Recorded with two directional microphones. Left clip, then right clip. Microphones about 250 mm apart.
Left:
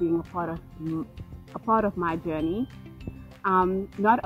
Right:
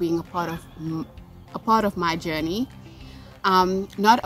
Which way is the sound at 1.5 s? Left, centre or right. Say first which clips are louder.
Right 3 dB; centre.